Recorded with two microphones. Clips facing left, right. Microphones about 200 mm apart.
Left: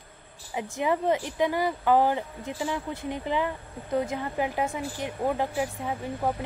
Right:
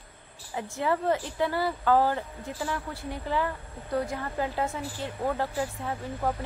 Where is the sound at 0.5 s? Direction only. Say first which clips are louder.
Left 1 dB; 15° left (ahead or behind).